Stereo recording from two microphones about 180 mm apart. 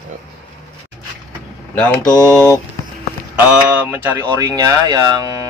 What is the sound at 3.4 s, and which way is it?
A man's voice, 10° right (ahead or behind).